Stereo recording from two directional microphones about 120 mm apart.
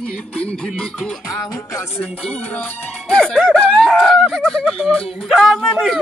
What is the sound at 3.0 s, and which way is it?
Speech, 5° left (ahead or behind).